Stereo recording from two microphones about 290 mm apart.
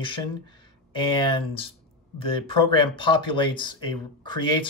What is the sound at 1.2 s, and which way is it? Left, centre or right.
Speech, centre.